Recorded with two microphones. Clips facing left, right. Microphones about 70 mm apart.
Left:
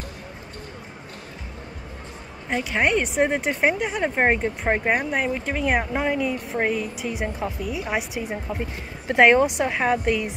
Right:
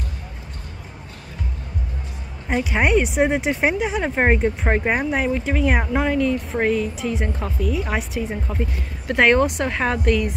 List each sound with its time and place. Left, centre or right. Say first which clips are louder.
2.5 s speech: right 3 dB; centre
6.0 s speech: right 4 dB; centre